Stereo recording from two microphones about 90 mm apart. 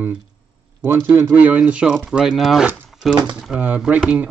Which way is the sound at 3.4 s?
10° right (ahead or behind).